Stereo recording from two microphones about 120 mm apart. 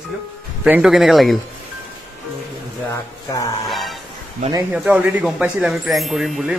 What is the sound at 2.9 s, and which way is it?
Speech, 30° left (ahead or behind).